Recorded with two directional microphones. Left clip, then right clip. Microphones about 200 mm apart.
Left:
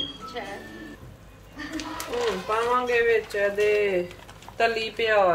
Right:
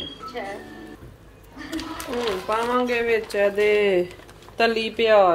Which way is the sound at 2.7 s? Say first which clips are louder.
Left 1 dB; 45° right (ahead or behind).